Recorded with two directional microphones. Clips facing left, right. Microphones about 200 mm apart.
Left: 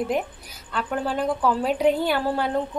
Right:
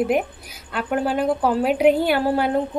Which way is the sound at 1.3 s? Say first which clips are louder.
Even; 30° right (ahead or behind).